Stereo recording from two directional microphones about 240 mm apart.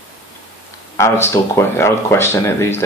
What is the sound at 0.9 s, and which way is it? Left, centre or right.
Speech, centre.